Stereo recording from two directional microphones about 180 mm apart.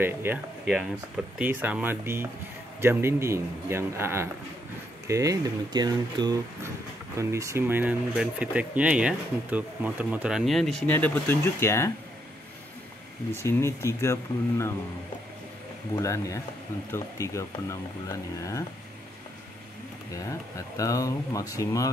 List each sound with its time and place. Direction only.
0.0 s a man's voice: 10° right (ahead or behind); by 11.9 s 15° left (ahead or behind)
13.3 s speech: 15° left (ahead or behind)
16.0 s speech: 15° left (ahead or behind)
20.2 s speech: 15° left (ahead or behind)